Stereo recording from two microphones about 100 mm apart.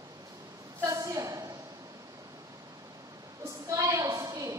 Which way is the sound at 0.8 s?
35° right (ahead or behind).